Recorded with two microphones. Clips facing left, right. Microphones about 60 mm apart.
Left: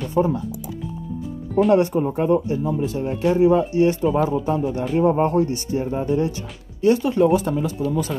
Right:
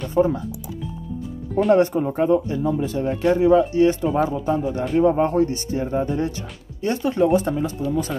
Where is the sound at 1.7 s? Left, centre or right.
Right.